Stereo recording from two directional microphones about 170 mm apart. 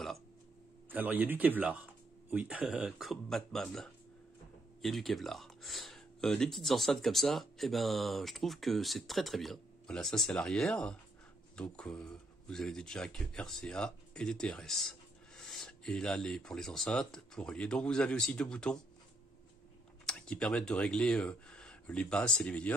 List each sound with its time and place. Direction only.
0.8 s a man's voice: 10° right (ahead or behind); by 18.8 s 5° left (ahead or behind)
20.1 s speech: 5° left (ahead or behind)